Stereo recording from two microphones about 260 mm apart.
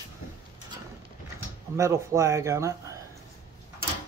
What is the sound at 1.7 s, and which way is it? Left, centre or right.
Speech, centre.